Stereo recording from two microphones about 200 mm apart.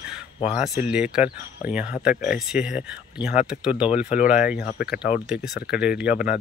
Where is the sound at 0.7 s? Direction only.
5° right (ahead or behind).